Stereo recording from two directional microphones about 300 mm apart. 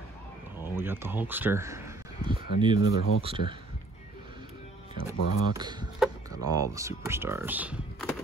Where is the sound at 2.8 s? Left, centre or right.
Left.